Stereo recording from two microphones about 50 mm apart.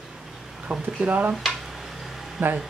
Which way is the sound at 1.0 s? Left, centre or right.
Right.